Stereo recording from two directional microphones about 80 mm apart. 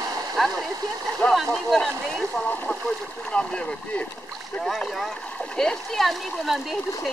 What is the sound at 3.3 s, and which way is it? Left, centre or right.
Speech, centre.